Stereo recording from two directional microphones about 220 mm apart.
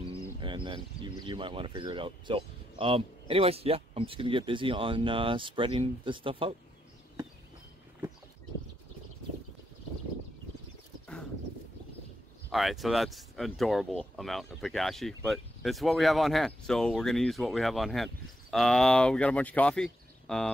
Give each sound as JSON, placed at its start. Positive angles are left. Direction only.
{"t": 0.4, "sound": "speech", "side_deg": -20}
{"t": 12.4, "sound": "speech", "side_deg": 0}